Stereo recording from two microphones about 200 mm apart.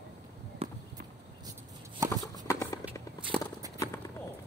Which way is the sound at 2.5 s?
15° left (ahead or behind).